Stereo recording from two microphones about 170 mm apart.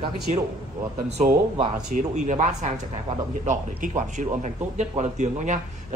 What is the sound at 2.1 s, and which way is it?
A man's voice, 45° right (ahead or behind).